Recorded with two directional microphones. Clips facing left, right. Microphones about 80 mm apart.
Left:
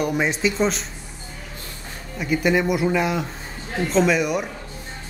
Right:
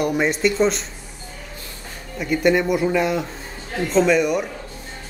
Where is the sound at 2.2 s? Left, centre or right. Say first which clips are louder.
Right 2 dB; centre.